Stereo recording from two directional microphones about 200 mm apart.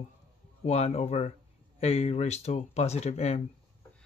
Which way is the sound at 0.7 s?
30° left (ahead or behind).